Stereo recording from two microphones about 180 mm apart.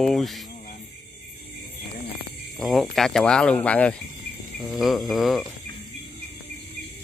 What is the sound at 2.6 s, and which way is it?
Speech, centre (ahead or behind).